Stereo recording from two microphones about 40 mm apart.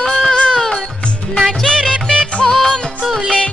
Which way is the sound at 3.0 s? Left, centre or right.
Centre.